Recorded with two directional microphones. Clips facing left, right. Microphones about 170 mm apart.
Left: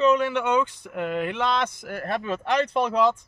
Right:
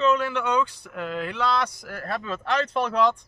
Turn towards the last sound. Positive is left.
turn(degrees=10)  # may be behind; listen again after turning